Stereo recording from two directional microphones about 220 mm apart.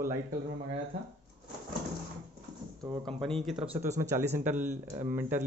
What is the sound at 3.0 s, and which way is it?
Speech, centre (ahead or behind).